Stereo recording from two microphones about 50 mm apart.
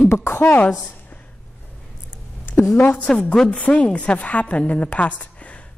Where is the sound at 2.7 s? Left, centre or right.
Left.